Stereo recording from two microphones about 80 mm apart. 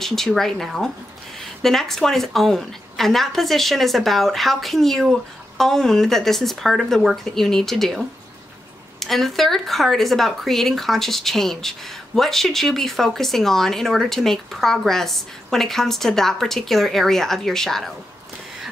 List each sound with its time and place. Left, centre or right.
0.0 s speech: centre
9.0 s speech: centre